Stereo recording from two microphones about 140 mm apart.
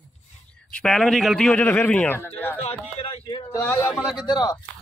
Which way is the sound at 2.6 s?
45° left (ahead or behind).